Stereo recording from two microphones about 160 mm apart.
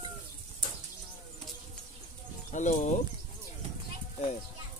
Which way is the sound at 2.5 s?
50° left (ahead or behind).